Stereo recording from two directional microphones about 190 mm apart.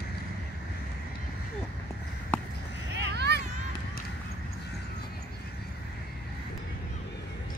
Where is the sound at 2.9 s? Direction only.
60° right (ahead or behind).